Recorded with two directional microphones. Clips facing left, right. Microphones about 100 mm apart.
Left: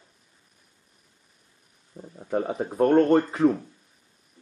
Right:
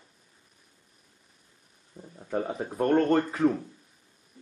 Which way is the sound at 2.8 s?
20° left (ahead or behind).